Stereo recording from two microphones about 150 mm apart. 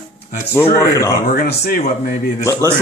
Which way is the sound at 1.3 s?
70° left (ahead or behind).